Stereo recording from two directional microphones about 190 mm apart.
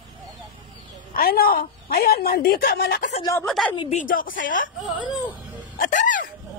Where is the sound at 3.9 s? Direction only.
45° left (ahead or behind).